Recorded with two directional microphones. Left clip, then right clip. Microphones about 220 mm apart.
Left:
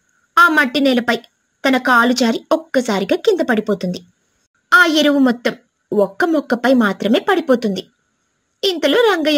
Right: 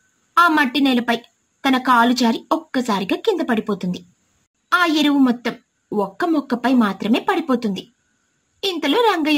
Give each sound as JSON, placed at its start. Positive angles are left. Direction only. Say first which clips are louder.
{"t": 0.3, "sound": "a woman's voice", "louder": "left 3 dB", "side_deg": 20}